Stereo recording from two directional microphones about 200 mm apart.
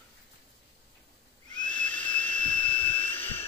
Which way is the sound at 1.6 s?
5° left (ahead or behind).